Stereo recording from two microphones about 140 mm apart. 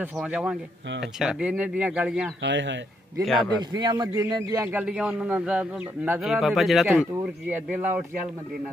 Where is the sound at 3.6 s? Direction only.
30° right (ahead or behind).